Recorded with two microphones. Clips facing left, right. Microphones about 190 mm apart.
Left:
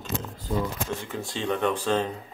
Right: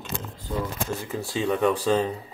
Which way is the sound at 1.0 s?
5° right (ahead or behind).